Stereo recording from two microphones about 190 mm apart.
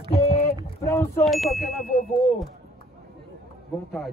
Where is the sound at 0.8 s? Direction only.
15° left (ahead or behind).